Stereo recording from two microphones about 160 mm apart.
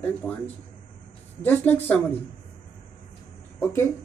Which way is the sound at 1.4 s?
10° left (ahead or behind).